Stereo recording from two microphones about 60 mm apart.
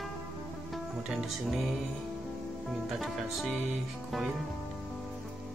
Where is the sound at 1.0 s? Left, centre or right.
Centre.